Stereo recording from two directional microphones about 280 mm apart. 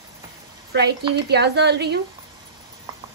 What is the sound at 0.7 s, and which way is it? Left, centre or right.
A woman's voice, right.